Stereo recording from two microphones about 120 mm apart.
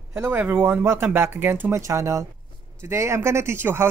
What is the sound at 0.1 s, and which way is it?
Speech, 20° right (ahead or behind).